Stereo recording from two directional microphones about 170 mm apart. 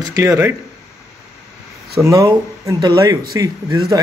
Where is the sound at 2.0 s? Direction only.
20° right (ahead or behind).